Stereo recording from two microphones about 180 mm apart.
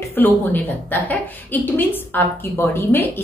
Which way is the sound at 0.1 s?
10° left (ahead or behind).